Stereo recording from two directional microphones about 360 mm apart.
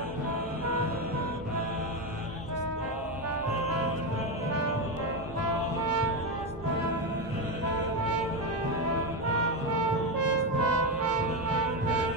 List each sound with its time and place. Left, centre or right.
10.2 s music: right